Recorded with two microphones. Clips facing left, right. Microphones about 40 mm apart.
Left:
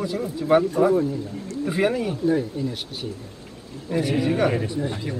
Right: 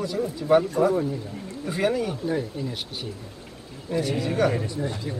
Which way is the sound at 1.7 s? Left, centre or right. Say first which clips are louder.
Left 2 dB; centre.